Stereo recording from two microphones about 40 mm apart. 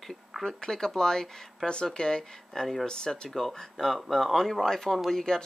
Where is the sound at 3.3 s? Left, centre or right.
Centre.